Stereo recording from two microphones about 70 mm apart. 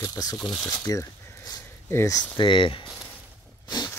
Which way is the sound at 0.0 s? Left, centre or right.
Left.